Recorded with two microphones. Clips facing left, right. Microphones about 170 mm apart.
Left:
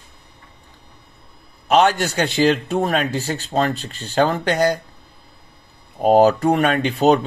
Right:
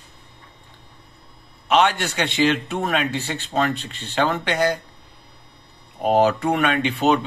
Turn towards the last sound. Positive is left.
turn(degrees=40)  # may be behind; listen again after turning